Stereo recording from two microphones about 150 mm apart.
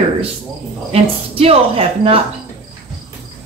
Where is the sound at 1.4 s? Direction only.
40° right (ahead or behind).